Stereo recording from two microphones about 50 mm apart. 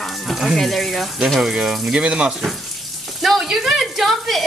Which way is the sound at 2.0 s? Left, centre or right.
Centre.